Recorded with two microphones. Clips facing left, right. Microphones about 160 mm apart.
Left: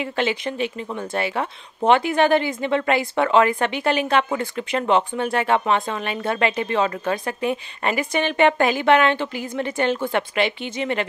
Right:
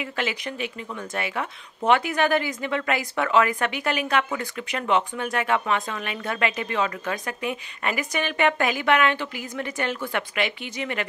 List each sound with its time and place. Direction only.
0.0 s speech: 30° left (ahead or behind)